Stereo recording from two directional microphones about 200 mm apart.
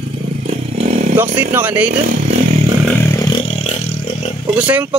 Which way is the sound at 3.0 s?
15° left (ahead or behind).